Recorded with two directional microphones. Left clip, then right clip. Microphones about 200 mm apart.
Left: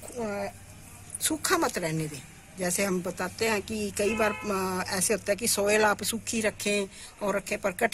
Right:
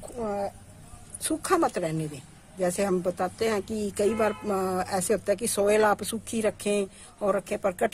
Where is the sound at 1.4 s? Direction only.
40° right (ahead or behind).